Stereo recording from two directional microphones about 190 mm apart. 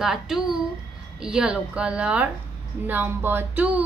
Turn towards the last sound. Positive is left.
turn(degrees=-10)  # may be behind; listen again after turning